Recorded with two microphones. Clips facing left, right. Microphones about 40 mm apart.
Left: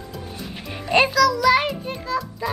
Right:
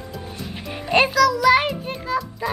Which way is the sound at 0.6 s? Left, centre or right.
Centre.